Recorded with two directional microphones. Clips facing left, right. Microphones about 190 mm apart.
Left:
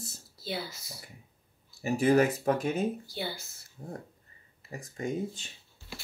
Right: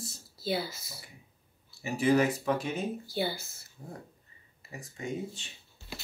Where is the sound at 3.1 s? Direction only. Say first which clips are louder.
Right 5 dB; 5° right (ahead or behind).